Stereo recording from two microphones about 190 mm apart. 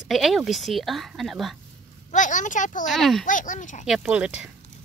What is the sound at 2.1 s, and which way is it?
Speech, 40° left (ahead or behind).